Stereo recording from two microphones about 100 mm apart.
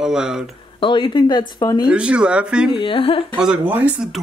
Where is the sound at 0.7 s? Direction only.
55° left (ahead or behind).